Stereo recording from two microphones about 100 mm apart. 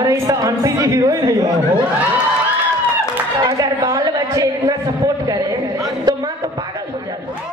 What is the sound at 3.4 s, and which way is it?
A woman's voice, 40° right (ahead or behind).